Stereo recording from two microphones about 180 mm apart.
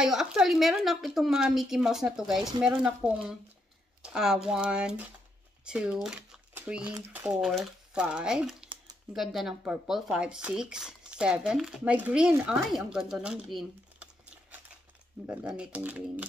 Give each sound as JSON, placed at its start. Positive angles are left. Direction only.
{"t": 0.0, "sound": "speech", "side_deg": -5}
{"t": 6.0, "sound": "a sound", "side_deg": -5}
{"t": 7.1, "sound": "speech", "side_deg": -5}
{"t": 15.2, "sound": "speech", "side_deg": -5}